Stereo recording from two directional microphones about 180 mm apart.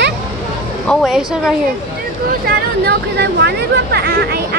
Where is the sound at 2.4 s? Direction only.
65° right (ahead or behind).